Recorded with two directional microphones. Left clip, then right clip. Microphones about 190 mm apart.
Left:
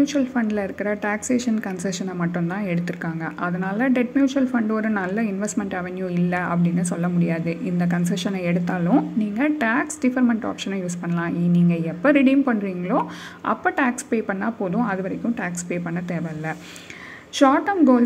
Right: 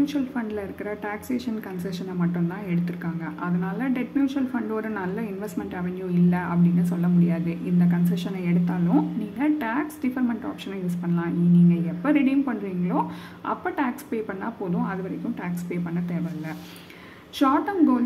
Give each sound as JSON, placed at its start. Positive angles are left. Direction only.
{"t": 0.0, "sound": "a woman's voice", "side_deg": 30}
{"t": 17.4, "sound": "a woman's voice", "side_deg": 30}